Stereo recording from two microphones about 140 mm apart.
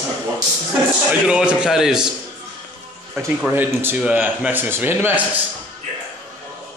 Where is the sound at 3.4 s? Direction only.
15° right (ahead or behind).